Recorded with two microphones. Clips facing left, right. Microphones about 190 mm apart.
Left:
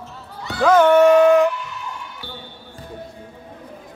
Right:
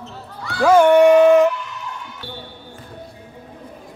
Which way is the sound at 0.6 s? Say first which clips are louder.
Right 1 dB; 10° right (ahead or behind).